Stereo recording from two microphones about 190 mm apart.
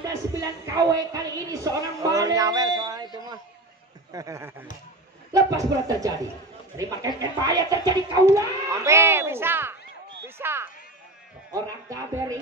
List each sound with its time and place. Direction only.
0.4 s a woman's voice: 20° right (ahead or behind)
4.1 s a woman's voice: 15° right (ahead or behind)
10.2 s a sound: 10° right (ahead or behind)
11.5 s speech: 20° right (ahead or behind)